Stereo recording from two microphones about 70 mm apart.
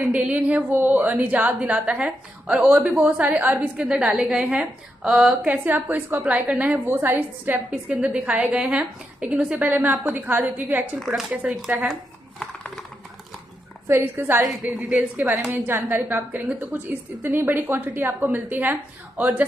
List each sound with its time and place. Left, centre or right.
0.1 s a woman's voice: centre
2.9 s a woman's voice: centre
3.2 s a woman's voice: right
6.9 s a woman's voice: right
7.5 s a woman's voice: centre
11.8 s speech: centre
13.8 s a woman's voice: right
14.4 s a woman's voice: centre
15.5 s a woman's voice: right